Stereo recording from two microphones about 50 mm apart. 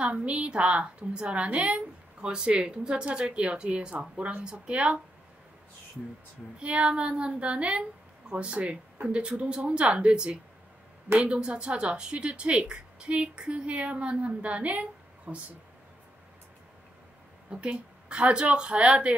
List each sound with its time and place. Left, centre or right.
0.0 s speech: right
6.6 s speech: right
17.5 s speech: right